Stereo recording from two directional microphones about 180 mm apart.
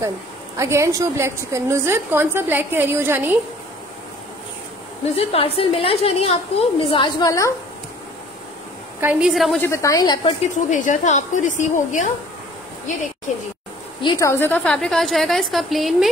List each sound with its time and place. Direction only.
0.6 s a woman's voice: 15° right (ahead or behind)
5.0 s a woman's voice: 35° left (ahead or behind); by 7.5 s 15° left (ahead or behind)
9.0 s a woman's voice: 5° right (ahead or behind)
9.6 s a woman's voice: 15° left (ahead or behind)
10.5 s a woman's voice: 45° left (ahead or behind)
14.0 s a woman's voice: 15° left (ahead or behind); by 16.1 s centre (ahead or behind)